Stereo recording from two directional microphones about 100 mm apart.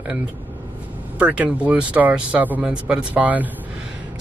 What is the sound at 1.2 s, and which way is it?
Speech, 15° right (ahead or behind).